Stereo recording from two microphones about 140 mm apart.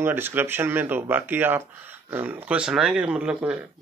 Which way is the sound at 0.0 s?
15° right (ahead or behind).